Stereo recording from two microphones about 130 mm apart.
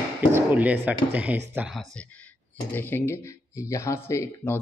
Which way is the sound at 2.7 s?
15° left (ahead or behind).